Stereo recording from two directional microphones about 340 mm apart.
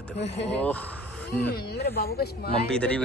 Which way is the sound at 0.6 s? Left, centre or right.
Centre.